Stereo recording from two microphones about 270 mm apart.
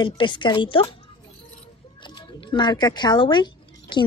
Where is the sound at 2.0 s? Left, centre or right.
Centre.